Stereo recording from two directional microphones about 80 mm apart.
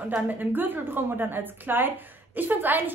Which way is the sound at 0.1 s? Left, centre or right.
Right.